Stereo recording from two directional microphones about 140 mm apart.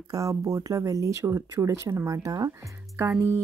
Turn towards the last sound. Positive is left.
turn(degrees=-15)  # may be behind; listen again after turning